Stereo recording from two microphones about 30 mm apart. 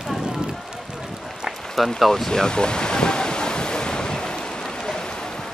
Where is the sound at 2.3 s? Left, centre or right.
Left.